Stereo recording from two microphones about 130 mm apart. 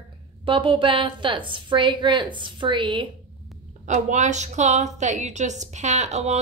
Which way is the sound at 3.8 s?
65° right (ahead or behind).